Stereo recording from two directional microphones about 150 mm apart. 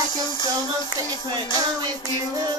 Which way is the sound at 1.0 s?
30° right (ahead or behind).